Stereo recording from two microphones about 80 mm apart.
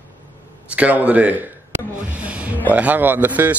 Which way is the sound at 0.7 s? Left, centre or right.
Centre.